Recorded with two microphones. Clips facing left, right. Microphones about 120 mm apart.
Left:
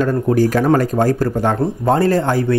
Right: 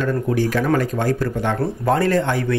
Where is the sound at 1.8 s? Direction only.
30° left (ahead or behind).